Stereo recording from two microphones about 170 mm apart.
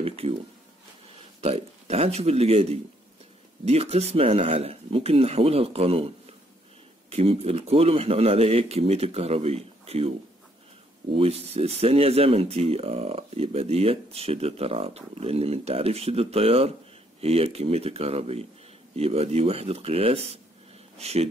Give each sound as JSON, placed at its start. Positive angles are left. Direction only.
{"t": 0.0, "sound": "speech", "side_deg": -35}
{"t": 1.4, "sound": "speech", "side_deg": -40}